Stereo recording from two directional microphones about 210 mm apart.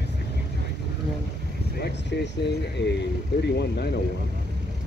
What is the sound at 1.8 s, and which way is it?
Speech, 55° left (ahead or behind).